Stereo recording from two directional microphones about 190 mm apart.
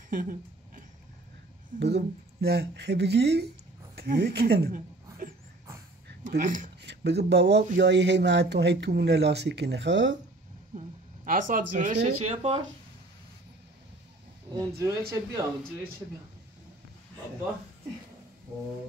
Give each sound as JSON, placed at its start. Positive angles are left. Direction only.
{"t": 0.1, "sound": "a sound", "side_deg": -45}
{"t": 1.8, "sound": "speech", "side_deg": -60}
{"t": 6.3, "sound": "speech", "side_deg": -45}
{"t": 6.8, "sound": "speech", "side_deg": -60}
{"t": 10.7, "sound": "speech", "side_deg": -40}
{"t": 14.5, "sound": "speech", "side_deg": -20}